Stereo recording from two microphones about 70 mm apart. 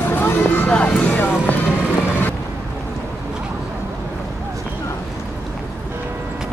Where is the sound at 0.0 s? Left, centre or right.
Left.